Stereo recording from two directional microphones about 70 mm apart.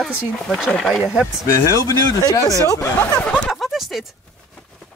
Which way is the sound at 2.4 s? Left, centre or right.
Right.